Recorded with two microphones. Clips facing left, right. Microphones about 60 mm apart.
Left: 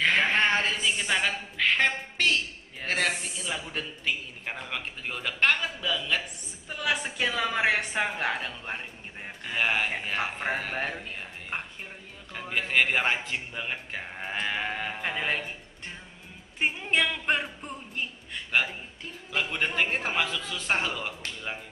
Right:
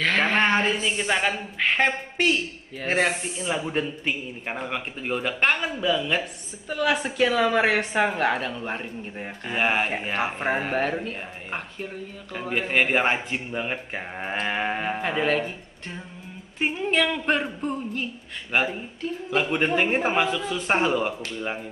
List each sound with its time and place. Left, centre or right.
0.4 s a woman's voice: centre
6.7 s a woman's voice: centre
11.1 s speech: centre
12.4 s speech: centre
15.0 s speech: centre
18.5 s a woman's voice: centre